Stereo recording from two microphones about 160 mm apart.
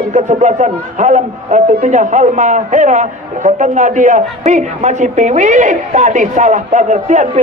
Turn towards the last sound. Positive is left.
turn(degrees=-50)  # may be behind; listen again after turning